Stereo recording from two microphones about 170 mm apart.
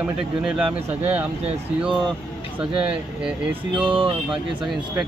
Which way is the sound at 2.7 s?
30° right (ahead or behind).